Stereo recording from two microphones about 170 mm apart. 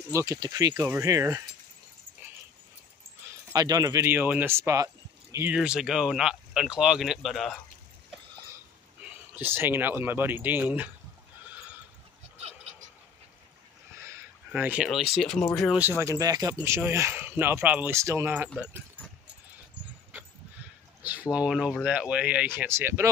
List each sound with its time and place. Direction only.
0.1 s speech: 20° right (ahead or behind)
3.5 s speech: 20° right (ahead or behind); by 7.6 s centre (ahead or behind)
9.4 s speech: 10° right (ahead or behind)
14.0 s speech: 10° right (ahead or behind)
16.0 s speech: 20° right (ahead or behind)
21.0 s speech: 10° right (ahead or behind)